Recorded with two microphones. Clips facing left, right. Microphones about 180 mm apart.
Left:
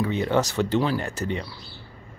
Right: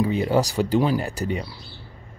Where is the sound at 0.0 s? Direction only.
10° right (ahead or behind).